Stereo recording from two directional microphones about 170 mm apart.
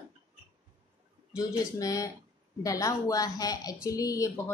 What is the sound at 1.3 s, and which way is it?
A woman's voice, 20° left (ahead or behind).